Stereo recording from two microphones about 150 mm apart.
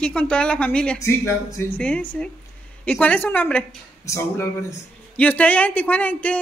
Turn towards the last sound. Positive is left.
turn(degrees=10)  # may be behind; listen again after turning